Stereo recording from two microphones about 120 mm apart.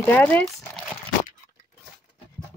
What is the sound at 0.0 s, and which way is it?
Speech, 15° left (ahead or behind).